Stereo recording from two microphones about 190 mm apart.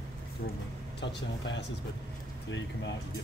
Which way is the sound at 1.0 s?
70° left (ahead or behind).